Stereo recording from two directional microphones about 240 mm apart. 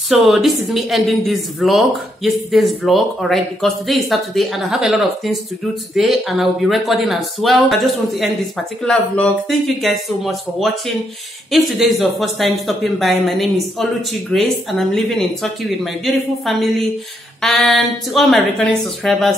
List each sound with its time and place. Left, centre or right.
0.1 s a woman's voice: centre